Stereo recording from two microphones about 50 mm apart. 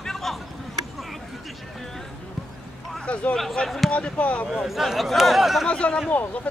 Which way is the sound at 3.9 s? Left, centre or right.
Left.